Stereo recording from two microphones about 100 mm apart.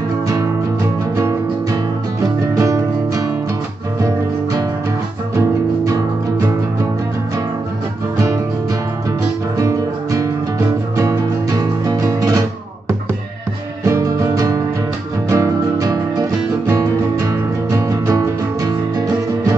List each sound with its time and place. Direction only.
1.1 s music: 30° right (ahead or behind)
9.6 s music: 30° right (ahead or behind)